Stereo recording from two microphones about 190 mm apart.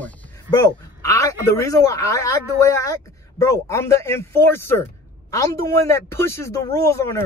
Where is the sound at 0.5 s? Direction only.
20° left (ahead or behind).